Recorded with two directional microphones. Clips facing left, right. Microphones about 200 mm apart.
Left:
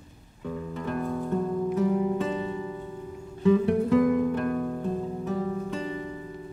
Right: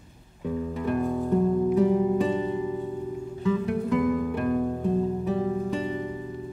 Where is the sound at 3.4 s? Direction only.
30° left (ahead or behind).